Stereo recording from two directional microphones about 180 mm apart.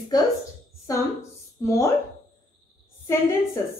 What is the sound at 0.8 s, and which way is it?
A woman's voice, 15° left (ahead or behind).